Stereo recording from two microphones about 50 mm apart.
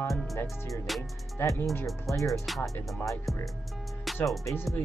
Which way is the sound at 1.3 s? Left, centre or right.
Left.